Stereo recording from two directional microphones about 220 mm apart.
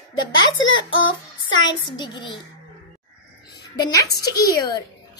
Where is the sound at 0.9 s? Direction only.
60° left (ahead or behind).